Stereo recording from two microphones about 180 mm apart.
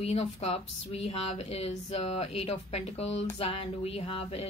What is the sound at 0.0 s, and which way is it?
Speech, 35° left (ahead or behind).